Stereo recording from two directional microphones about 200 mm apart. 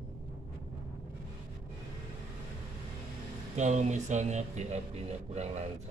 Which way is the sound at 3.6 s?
35° right (ahead or behind).